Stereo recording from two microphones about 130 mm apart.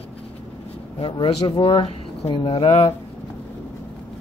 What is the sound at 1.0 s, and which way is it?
Speech, 40° left (ahead or behind).